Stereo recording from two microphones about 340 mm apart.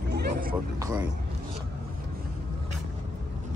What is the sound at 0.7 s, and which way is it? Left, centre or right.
Speech, centre.